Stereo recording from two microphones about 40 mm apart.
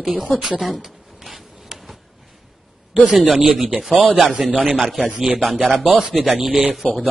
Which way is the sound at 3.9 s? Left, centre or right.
Right.